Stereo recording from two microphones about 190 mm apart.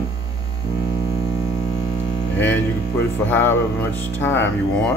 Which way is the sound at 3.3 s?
10° left (ahead or behind).